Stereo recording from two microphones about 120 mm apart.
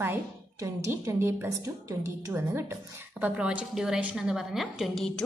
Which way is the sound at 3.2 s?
10° right (ahead or behind).